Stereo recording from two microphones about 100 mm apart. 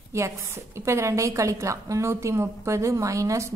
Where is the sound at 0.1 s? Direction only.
25° right (ahead or behind).